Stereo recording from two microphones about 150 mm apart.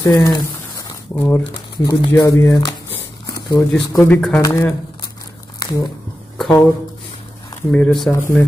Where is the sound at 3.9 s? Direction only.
10° left (ahead or behind).